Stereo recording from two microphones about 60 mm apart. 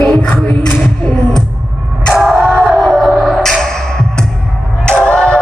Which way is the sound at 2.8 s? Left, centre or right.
Centre.